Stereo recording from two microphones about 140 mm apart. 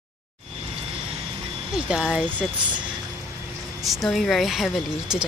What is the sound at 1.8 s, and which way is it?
Speech, 5° right (ahead or behind).